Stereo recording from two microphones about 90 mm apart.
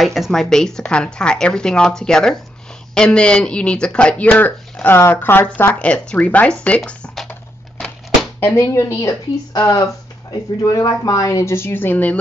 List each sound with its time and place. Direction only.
0.0 s a woman's voice: centre (ahead or behind); by 5.7 s 25° left (ahead or behind)
5.7 s a woman's voice: 15° left (ahead or behind)
8.5 s speech: 35° left (ahead or behind); by 12.2 s 20° left (ahead or behind)